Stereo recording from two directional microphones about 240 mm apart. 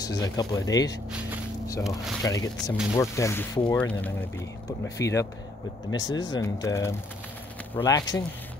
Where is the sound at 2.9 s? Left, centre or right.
Centre.